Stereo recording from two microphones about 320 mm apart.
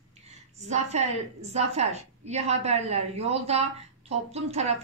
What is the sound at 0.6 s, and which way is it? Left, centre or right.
A woman's voice, right.